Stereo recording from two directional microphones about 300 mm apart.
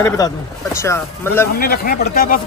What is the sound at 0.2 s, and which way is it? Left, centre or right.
Speech, centre.